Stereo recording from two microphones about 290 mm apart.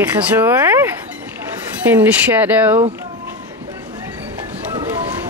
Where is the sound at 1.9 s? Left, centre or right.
Centre.